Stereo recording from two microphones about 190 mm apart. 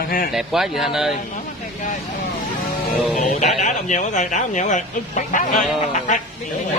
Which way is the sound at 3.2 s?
40° left (ahead or behind).